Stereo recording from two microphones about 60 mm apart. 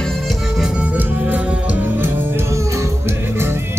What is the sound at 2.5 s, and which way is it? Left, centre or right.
Music, right.